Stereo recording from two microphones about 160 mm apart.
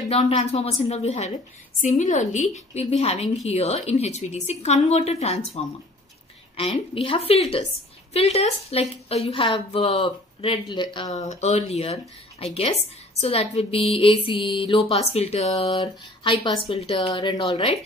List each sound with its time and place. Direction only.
0.1 s a woman's voice: 40° left (ahead or behind)
11.1 s a woman's voice: 45° left (ahead or behind)
15.8 s speech: 30° left (ahead or behind)